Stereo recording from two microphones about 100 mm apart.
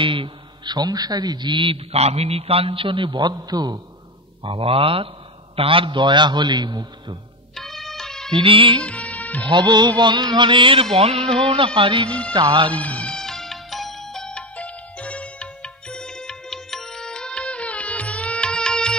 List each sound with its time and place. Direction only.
0.0 s a sound: 60° right (ahead or behind)
0.7 s a man's voice: 40° right (ahead or behind)
4.4 s music: 60° right (ahead or behind)
5.6 s a man's voice: 60° right (ahead or behind); by 7.2 s 45° right (ahead or behind)
7.5 s music: centre (ahead or behind)
8.3 s music: 60° right (ahead or behind)
8.8 s music: 15° left (ahead or behind)
9.5 s music: 50° right (ahead or behind)
12.3 s a man's voice: 50° right (ahead or behind)
12.8 s music: 10° left (ahead or behind)